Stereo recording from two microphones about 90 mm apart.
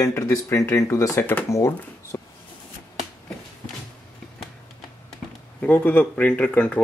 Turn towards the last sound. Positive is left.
turn(degrees=15)  # may be behind; listen again after turning